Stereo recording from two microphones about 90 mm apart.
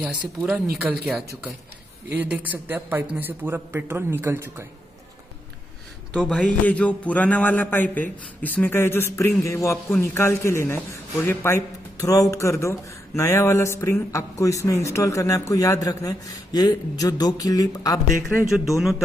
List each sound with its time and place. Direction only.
0.4 s a man's voice: 10° right (ahead or behind); by 4.6 s 30° right (ahead or behind)
6.1 s a man's voice: 10° left (ahead or behind); by 18.0 s 40° left (ahead or behind)
18.8 s speech: centre (ahead or behind)